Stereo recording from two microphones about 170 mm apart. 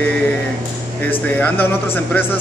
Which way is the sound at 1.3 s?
10° left (ahead or behind).